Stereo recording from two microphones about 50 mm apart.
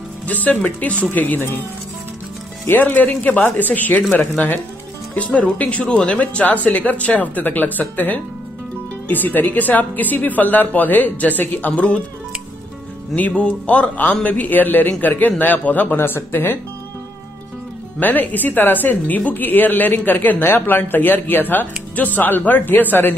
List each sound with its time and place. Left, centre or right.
0.3 s speech: left
5.1 s speech: left
13.1 s speech: left
17.9 s speech: left